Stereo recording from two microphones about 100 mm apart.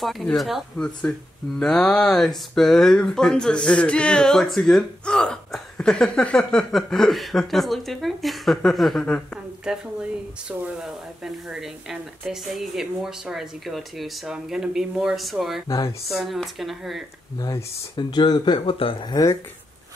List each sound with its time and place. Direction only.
0.2 s a woman's voice: centre (ahead or behind)
11.4 s speech: 5° right (ahead or behind)
17.9 s speech: 50° left (ahead or behind)